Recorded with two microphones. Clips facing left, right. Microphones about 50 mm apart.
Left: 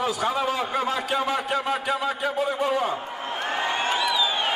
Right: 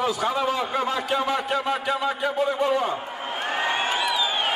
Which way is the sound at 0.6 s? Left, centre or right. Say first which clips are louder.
Even; centre.